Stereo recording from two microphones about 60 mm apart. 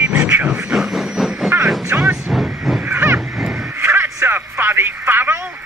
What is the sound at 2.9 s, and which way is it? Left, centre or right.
Vehicle, right.